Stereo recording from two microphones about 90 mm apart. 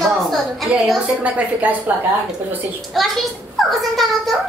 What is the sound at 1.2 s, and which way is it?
Speech, 15° right (ahead or behind).